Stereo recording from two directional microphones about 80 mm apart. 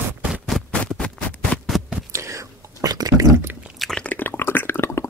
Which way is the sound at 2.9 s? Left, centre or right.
Right.